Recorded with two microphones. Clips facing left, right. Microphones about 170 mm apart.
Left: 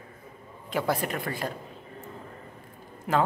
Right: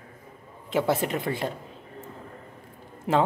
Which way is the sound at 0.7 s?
25° right (ahead or behind).